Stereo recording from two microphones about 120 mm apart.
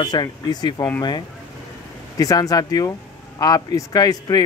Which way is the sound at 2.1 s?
30° left (ahead or behind).